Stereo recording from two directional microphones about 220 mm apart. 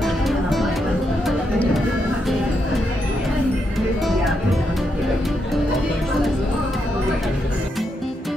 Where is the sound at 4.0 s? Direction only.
Centre (ahead or behind).